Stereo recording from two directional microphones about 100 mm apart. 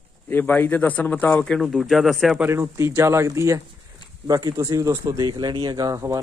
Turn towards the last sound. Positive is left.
turn(degrees=-35)  # may be behind; listen again after turning